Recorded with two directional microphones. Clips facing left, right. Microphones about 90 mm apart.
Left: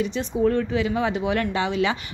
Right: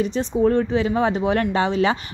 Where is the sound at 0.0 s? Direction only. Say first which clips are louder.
Right 3 dB; 40° right (ahead or behind).